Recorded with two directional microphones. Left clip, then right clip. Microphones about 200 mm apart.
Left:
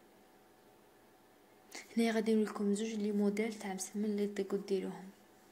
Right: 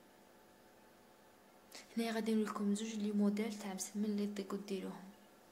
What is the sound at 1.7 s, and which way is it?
A woman's voice, 15° left (ahead or behind).